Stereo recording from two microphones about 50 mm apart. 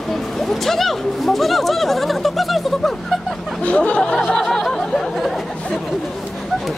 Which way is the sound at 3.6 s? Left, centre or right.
Left.